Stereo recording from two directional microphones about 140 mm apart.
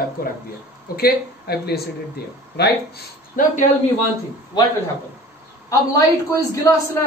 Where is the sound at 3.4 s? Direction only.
70° left (ahead or behind).